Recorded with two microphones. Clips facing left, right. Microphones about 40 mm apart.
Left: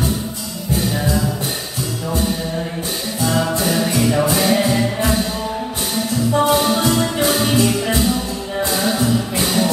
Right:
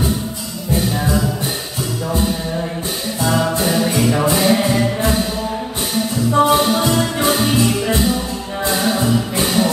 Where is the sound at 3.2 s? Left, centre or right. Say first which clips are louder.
Right 1 dB; centre.